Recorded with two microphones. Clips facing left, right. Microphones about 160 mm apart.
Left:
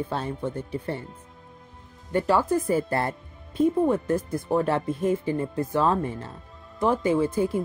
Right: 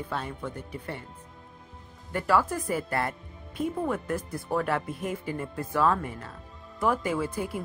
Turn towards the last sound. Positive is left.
turn(degrees=25)  # may be behind; listen again after turning